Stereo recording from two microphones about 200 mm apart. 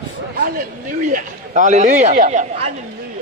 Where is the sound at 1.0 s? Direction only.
40° right (ahead or behind).